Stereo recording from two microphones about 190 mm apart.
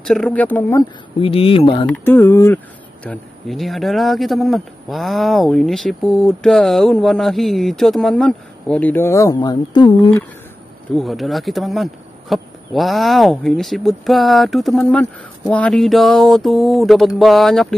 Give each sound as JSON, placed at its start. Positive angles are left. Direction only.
{"t": 0.0, "sound": "speech", "side_deg": 5}
{"t": 1.2, "sound": "speech", "side_deg": 30}
{"t": 1.9, "sound": "speech", "side_deg": 10}
{"t": 11.0, "sound": "speech", "side_deg": 0}